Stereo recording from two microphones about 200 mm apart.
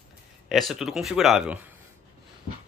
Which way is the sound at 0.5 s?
Centre (ahead or behind).